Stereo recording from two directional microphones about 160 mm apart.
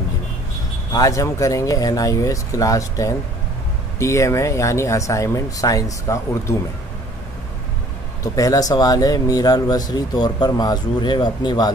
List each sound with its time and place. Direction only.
0.9 s speech: 20° left (ahead or behind)
8.2 s speech: 20° left (ahead or behind)